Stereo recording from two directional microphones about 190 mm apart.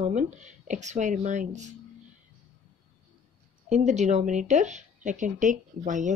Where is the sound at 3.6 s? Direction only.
35° right (ahead or behind).